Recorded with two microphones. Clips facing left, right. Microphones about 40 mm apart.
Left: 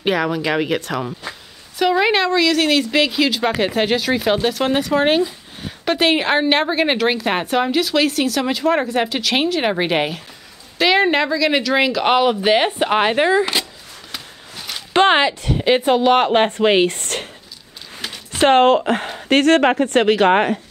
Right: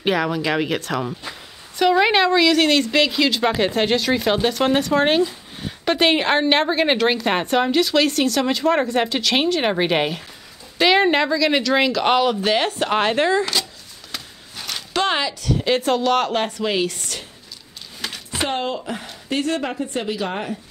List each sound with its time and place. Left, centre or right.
0.0 s a woman's voice: centre
14.1 s a sound: centre
14.9 s speech: left
18.4 s a woman's voice: left